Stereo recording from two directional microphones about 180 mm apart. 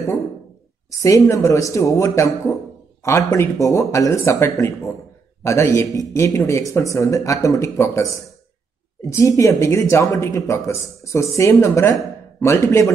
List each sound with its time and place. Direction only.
0.8 s speech: 15° left (ahead or behind)